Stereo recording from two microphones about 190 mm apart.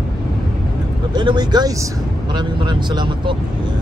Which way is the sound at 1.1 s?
25° right (ahead or behind).